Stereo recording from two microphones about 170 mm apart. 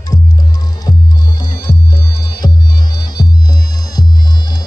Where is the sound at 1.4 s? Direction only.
20° left (ahead or behind).